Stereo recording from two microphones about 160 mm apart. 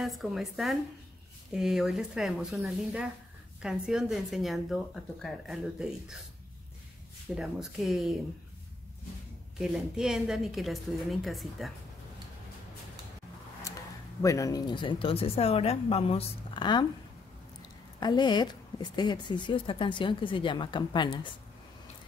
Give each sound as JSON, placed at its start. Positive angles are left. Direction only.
{"t": 0.0, "sound": "speech", "side_deg": 0}
{"t": 7.3, "sound": "speech", "side_deg": 0}
{"t": 9.6, "sound": "speech", "side_deg": -5}
{"t": 14.2, "sound": "a woman's voice", "side_deg": 20}